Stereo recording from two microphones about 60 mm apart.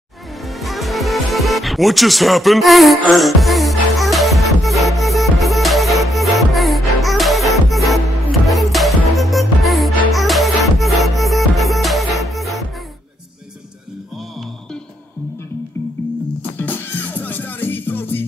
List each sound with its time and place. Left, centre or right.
0.4 s music: centre
16.5 s music: left